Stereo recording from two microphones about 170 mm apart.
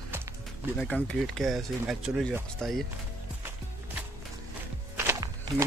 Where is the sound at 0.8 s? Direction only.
10° left (ahead or behind).